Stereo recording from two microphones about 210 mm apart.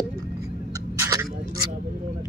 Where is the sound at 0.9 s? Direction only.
15° right (ahead or behind).